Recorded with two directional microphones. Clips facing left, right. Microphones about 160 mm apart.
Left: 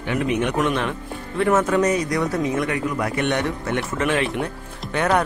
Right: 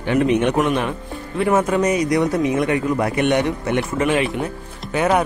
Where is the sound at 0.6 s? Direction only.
10° right (ahead or behind).